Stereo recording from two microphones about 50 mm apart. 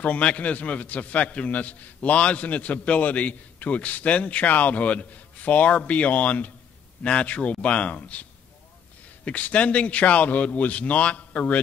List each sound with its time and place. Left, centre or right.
0.0 s a man's voice: left